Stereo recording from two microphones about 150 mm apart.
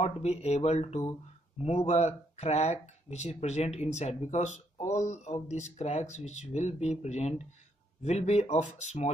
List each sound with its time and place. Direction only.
0.0 s speech: 45° left (ahead or behind)